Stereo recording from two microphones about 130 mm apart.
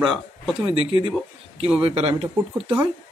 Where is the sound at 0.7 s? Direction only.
45° right (ahead or behind).